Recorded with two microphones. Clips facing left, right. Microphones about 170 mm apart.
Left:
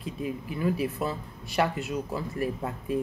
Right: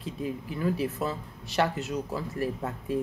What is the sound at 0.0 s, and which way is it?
Speech, 10° left (ahead or behind).